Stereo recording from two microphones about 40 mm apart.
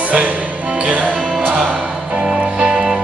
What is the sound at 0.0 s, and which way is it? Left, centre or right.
Music, right.